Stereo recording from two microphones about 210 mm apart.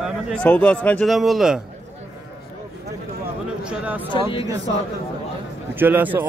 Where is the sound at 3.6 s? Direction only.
5° right (ahead or behind).